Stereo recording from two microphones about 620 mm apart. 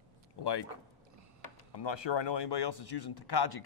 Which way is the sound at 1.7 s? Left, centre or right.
Left.